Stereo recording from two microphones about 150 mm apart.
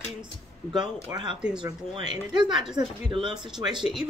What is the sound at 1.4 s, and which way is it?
Speech, 5° right (ahead or behind).